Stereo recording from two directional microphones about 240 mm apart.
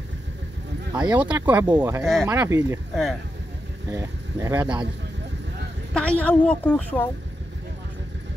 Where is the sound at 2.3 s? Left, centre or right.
Centre.